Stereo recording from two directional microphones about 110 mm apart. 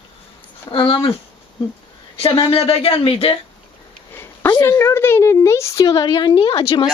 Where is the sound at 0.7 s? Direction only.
50° left (ahead or behind).